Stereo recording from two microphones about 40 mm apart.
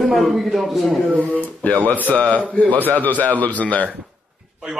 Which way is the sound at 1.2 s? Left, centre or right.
Left.